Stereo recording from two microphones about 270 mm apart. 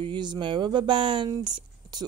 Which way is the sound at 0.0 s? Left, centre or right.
Centre.